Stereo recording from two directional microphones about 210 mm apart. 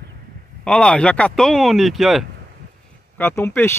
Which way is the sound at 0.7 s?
5° left (ahead or behind).